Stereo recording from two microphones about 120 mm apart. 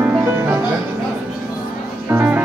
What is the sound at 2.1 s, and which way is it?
Music, 15° right (ahead or behind).